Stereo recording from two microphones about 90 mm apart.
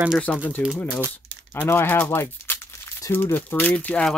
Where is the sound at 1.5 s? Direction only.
25° left (ahead or behind).